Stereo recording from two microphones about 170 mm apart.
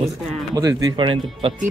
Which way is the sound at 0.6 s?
20° right (ahead or behind).